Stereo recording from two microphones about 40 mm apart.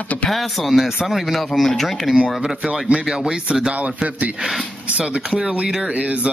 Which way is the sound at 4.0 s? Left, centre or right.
Right.